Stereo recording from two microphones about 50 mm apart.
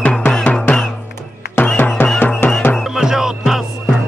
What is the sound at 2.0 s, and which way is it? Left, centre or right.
Music, left.